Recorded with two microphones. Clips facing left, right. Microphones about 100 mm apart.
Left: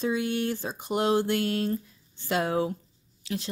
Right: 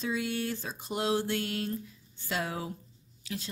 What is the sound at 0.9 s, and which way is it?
A woman's voice, 55° left (ahead or behind).